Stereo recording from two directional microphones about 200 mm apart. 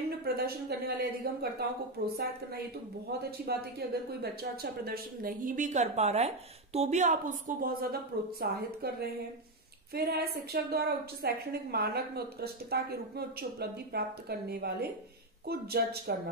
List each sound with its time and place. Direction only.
0.1 s a woman's voice: 55° right (ahead or behind)